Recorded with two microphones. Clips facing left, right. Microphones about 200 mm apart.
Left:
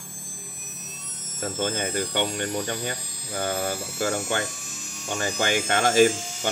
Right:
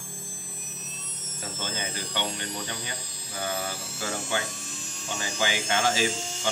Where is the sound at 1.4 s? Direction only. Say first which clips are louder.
Left 8 dB; 55° left (ahead or behind).